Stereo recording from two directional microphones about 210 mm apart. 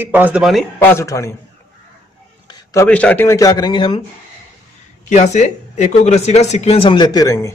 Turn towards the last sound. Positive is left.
turn(degrees=15)  # may be behind; listen again after turning